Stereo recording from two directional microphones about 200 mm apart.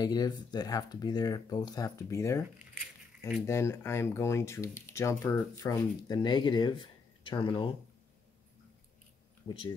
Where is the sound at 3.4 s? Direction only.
15° left (ahead or behind).